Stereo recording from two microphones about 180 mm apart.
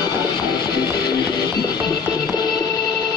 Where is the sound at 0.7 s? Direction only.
25° left (ahead or behind).